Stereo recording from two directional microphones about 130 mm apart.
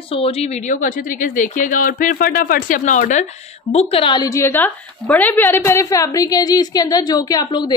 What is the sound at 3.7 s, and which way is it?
Speech, 50° left (ahead or behind).